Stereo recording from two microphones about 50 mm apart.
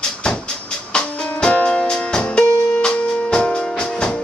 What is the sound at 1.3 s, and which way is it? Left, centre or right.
Music, left.